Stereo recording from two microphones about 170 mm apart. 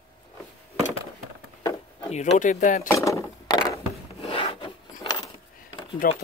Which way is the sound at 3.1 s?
20° left (ahead or behind).